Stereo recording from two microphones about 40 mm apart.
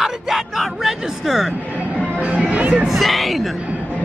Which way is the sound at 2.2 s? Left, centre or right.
Right.